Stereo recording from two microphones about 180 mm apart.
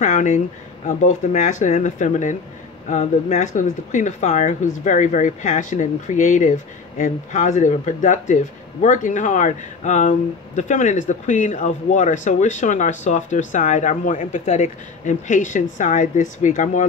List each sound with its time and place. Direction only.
0.0 s speech: 40° left (ahead or behind)